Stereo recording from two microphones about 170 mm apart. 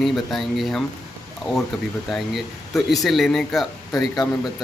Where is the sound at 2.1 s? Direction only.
Centre (ahead or behind).